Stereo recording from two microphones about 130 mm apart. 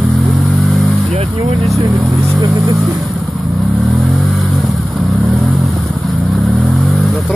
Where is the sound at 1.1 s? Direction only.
50° right (ahead or behind).